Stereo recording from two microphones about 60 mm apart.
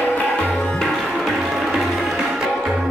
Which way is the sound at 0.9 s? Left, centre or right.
Centre.